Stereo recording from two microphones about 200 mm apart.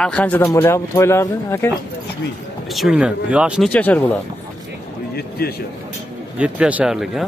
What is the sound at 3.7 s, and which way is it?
Speech, 10° left (ahead or behind).